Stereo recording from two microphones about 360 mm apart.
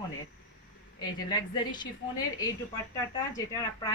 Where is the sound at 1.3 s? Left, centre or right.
Centre.